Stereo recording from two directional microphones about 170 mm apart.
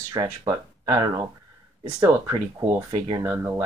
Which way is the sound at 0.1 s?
25° right (ahead or behind).